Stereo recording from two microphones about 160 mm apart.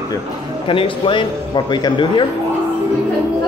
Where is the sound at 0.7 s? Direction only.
35° left (ahead or behind).